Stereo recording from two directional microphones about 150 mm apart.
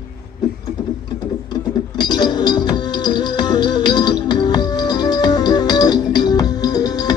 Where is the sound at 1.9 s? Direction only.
30° left (ahead or behind).